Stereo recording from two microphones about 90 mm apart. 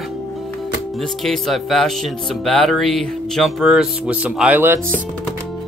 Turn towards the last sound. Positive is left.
turn(degrees=-15)  # may be behind; listen again after turning